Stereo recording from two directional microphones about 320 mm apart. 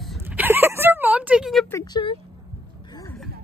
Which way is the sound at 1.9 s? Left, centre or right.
Centre.